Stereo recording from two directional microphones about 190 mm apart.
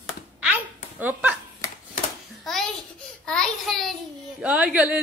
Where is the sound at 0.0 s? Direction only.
5° right (ahead or behind).